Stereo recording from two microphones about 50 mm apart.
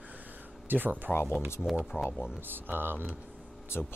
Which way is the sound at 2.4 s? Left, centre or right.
Right.